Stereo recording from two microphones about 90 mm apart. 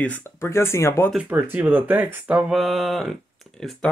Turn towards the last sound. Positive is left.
turn(degrees=5)  # may be behind; listen again after turning